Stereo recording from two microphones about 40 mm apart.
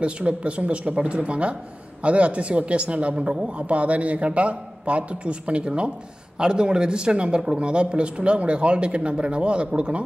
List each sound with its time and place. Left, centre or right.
0.0 s a man's voice: right